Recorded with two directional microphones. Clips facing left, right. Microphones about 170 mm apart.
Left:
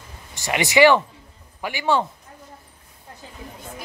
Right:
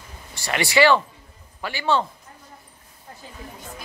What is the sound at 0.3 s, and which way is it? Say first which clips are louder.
A man's voice: left 2 dB; 20° left (ahead or behind).